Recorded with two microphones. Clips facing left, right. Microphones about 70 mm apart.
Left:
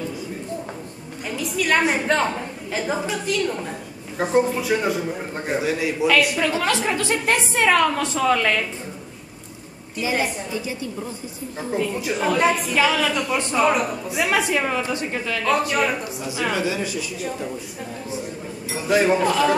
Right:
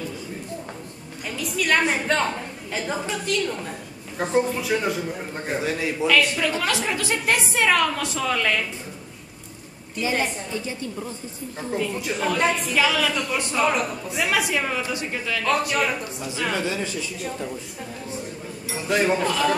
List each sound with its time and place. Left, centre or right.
1.3 s a woman's voice: centre
9.9 s a woman's voice: centre
11.6 s a woman's voice: centre
18.8 s a woman's voice: centre